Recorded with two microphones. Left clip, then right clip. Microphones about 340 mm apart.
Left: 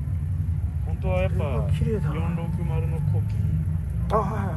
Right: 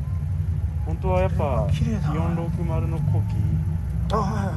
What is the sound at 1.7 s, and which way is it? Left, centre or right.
Speech, centre.